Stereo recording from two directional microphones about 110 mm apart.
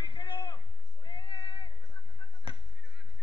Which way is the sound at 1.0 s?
45° left (ahead or behind).